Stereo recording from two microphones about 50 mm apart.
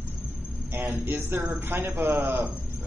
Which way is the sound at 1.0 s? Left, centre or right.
Right.